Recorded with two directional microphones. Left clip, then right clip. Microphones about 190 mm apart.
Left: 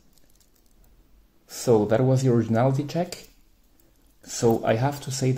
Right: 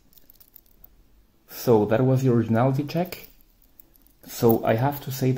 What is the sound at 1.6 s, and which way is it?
Speech, 10° right (ahead or behind).